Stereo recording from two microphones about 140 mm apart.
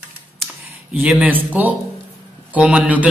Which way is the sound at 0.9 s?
10° right (ahead or behind).